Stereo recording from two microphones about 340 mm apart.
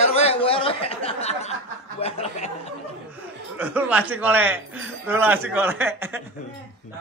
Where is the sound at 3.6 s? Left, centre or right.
Centre.